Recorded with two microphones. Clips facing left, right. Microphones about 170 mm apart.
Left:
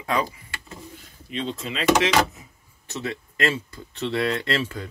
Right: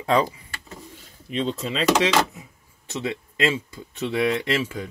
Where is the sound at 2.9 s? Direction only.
20° right (ahead or behind).